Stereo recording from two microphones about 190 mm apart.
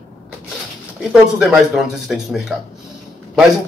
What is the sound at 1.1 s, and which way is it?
Speech, centre (ahead or behind).